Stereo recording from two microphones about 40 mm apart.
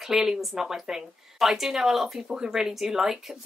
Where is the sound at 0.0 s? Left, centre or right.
Centre.